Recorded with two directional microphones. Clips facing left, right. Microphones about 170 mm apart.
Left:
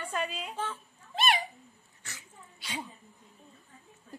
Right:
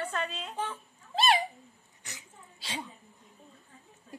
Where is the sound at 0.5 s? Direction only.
15° right (ahead or behind).